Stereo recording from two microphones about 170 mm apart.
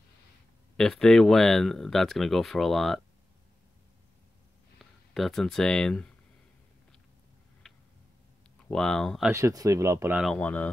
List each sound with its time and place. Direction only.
0.7 s speech: 5° left (ahead or behind)
5.1 s speech: centre (ahead or behind)
7.6 s a sound: centre (ahead or behind)
8.6 s speech: 5° left (ahead or behind)
9.3 s speech: 20° right (ahead or behind)
10.1 s speech: centre (ahead or behind)